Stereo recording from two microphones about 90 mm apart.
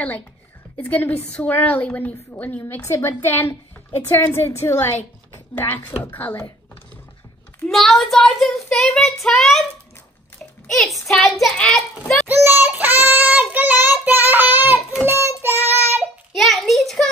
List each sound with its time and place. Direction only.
0.7 s a woman's voice: 20° left (ahead or behind)
2.8 s a woman's voice: 30° left (ahead or behind)
7.6 s child singing: centre (ahead or behind)
10.7 s child singing: 5° left (ahead or behind)
11.5 s a woman's voice: 10° left (ahead or behind)
12.3 s child singing: 25° right (ahead or behind)
16.3 s a sound: centre (ahead or behind)